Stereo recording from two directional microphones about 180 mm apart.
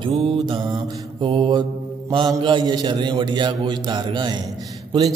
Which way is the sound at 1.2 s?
25° right (ahead or behind).